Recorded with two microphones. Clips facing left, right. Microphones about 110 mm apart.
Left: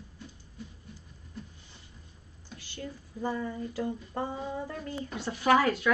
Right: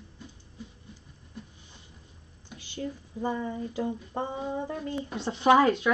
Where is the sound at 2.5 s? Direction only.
15° right (ahead or behind).